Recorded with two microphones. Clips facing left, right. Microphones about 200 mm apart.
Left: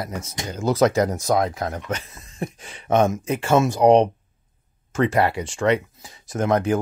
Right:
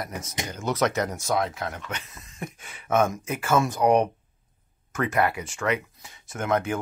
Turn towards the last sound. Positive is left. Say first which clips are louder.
# left 5 dB
turn(degrees=35)  # may be behind; listen again after turning